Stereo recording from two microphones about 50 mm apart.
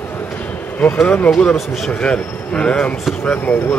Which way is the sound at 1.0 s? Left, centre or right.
Left.